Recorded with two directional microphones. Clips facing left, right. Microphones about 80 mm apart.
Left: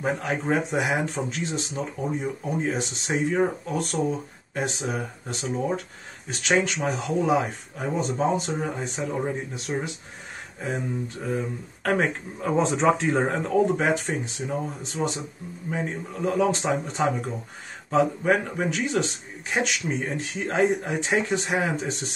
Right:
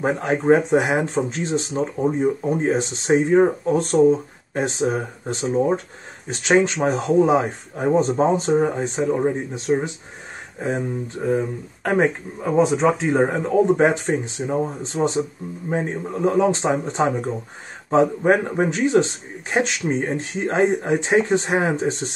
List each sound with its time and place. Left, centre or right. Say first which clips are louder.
0.0 s a man's voice: right 6 dB; right
12.4 s speech: right 4 dB; centre
13.7 s a man's voice: right 6 dB; right